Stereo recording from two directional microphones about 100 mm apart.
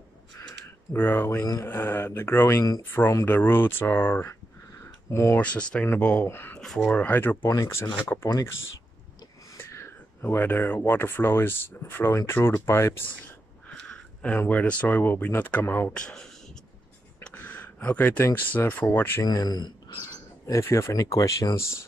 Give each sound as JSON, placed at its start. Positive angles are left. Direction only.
{"t": 0.9, "sound": "speech", "side_deg": 20}
{"t": 1.4, "sound": "speech", "side_deg": 35}
{"t": 1.7, "sound": "speech", "side_deg": 20}
{"t": 5.4, "sound": "speech", "side_deg": 10}
{"t": 7.4, "sound": "speech", "side_deg": 30}
{"t": 9.6, "sound": "speech", "side_deg": 25}
{"t": 13.7, "sound": "a sound", "side_deg": 10}
{"t": 14.4, "sound": "speech", "side_deg": 15}
{"t": 15.9, "sound": "speech", "side_deg": 10}
{"t": 17.2, "sound": "a sound", "side_deg": 15}
{"t": 17.7, "sound": "speech", "side_deg": 20}
{"t": 19.2, "sound": "speech", "side_deg": 40}